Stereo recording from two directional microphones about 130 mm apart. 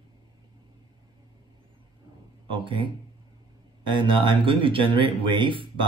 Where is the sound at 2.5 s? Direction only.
40° right (ahead or behind).